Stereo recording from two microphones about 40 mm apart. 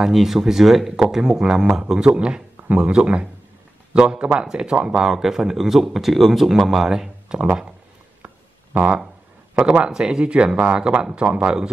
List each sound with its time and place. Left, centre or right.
0.1 s speech: centre
2.1 s speech: right; by 6.9 s centre
6.9 s speech: centre
8.7 s speech: right